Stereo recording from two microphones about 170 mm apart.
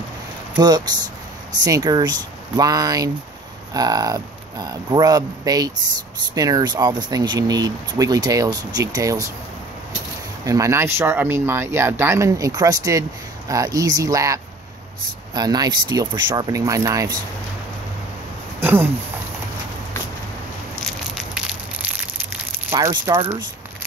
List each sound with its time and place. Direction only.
0.6 s speech: 25° right (ahead or behind)
10.4 s speech: 20° right (ahead or behind)
18.6 s speech: 10° right (ahead or behind)
20.8 s crushing: 5° right (ahead or behind)
22.8 s speech: 20° right (ahead or behind)